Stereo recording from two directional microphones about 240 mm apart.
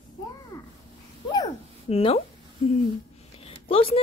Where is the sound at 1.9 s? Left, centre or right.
Left.